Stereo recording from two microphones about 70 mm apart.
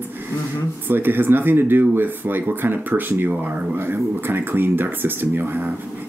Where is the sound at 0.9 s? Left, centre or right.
Right.